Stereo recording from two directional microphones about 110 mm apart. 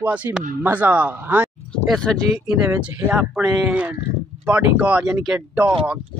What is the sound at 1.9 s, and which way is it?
Speech, 5° left (ahead or behind).